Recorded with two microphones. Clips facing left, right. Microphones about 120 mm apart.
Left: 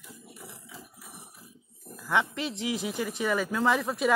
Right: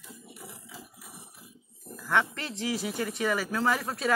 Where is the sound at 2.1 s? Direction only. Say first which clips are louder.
Even; 15° left (ahead or behind).